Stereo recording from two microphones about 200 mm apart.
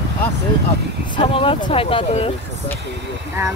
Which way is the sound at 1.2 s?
25° left (ahead or behind).